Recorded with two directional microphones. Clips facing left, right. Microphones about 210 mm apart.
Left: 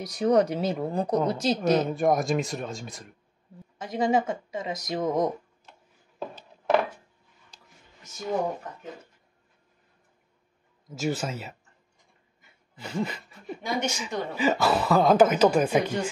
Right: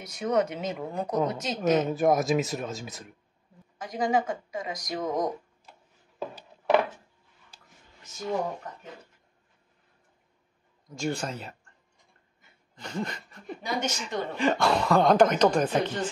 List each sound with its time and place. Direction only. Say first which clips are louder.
0.0 s speech: left 4 dB; 35° left (ahead or behind)
1.9 s speech: even; centre (ahead or behind)
3.7 s speech: left 2 dB; 25° left (ahead or behind)
10.9 s speech: left 2 dB; 5° left (ahead or behind)
12.7 s speech: left 3 dB; 5° left (ahead or behind)